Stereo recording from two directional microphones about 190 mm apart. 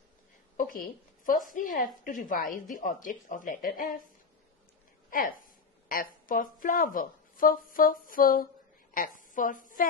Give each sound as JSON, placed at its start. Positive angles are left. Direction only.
{"t": 0.6, "sound": "a woman's voice", "side_deg": 50}
{"t": 6.2, "sound": "a woman's voice", "side_deg": 45}